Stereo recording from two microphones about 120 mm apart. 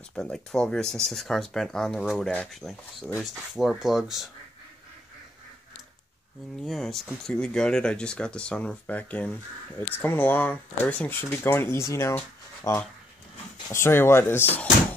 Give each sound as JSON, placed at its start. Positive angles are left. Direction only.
{"t": 0.1, "sound": "speech", "side_deg": 5}
{"t": 6.6, "sound": "speech", "side_deg": 0}